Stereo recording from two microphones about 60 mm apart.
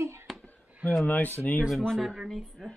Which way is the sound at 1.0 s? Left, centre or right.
Left.